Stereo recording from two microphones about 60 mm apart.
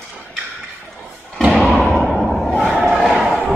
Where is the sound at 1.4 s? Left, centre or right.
Centre.